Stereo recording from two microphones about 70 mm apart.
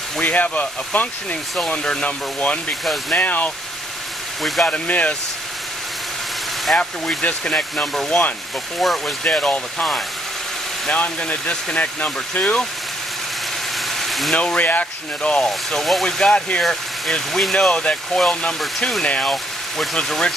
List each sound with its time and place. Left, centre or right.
0.2 s speech: left
2.8 s speech: centre
3.2 s speech: left
4.4 s speech: centre
4.6 s speech: centre
6.8 s speech: centre
9.2 s speech: centre
10.9 s speech: centre
13.9 s vehicle: centre
14.3 s speech: centre
15.4 s speech: centre